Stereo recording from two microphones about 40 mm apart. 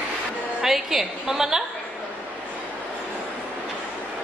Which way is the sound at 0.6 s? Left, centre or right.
Centre.